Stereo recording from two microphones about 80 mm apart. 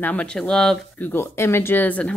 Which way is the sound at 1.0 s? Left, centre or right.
Left.